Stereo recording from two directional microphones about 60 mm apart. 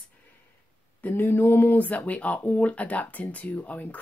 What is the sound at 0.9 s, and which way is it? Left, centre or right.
Speech, left.